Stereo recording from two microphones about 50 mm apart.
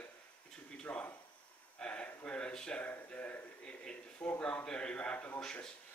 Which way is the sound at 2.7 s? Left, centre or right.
Left.